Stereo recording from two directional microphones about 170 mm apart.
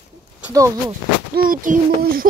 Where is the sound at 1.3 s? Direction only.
55° right (ahead or behind).